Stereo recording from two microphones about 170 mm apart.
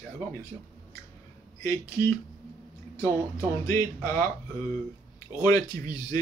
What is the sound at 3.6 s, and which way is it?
Speech, 15° left (ahead or behind).